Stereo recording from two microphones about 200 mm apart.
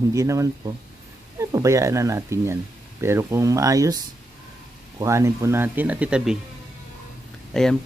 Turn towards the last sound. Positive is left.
turn(degrees=0)  # may be behind; listen again after turning